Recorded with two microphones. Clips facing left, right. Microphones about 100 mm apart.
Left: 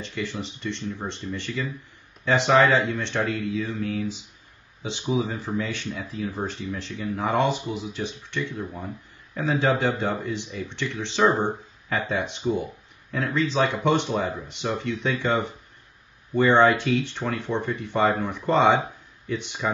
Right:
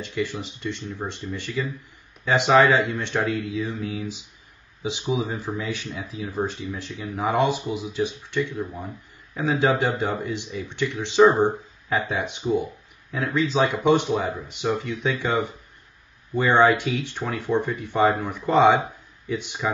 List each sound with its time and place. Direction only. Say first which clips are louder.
0.0 s speech: right 3 dB; 15° right (ahead or behind)